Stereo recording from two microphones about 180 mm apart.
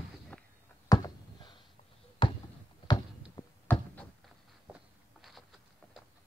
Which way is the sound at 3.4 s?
25° left (ahead or behind).